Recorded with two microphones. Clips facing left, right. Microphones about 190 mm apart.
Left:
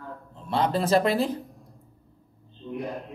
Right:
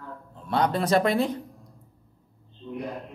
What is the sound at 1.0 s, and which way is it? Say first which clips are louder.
Speech: even; 30° left (ahead or behind).